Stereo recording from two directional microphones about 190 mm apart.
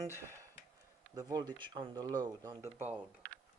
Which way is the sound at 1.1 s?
20° right (ahead or behind).